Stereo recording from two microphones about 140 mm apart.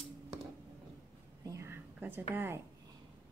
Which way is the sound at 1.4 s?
20° right (ahead or behind).